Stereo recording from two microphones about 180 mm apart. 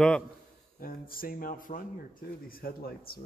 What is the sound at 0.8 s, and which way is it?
A man's voice, 55° left (ahead or behind).